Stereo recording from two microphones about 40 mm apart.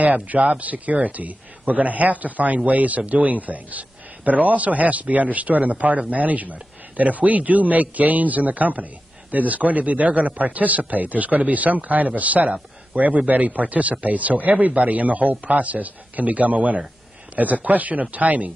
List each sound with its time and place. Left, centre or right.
0.0 s a man's voice: right